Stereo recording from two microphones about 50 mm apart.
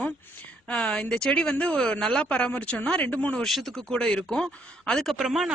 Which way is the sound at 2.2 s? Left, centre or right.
Left.